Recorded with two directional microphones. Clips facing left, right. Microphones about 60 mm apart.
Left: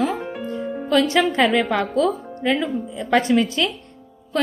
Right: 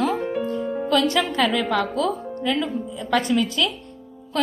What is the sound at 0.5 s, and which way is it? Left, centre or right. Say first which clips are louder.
A woman's voice: left 4 dB; left.